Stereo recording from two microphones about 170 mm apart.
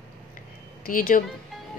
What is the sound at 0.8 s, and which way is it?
Speech, 55° left (ahead or behind).